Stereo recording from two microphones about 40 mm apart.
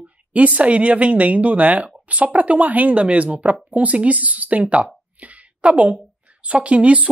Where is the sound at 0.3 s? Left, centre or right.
Right.